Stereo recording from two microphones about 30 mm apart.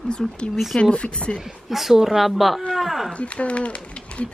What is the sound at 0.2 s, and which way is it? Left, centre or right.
Speech, centre.